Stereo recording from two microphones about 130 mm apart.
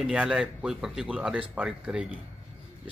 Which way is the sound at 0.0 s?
5° right (ahead or behind).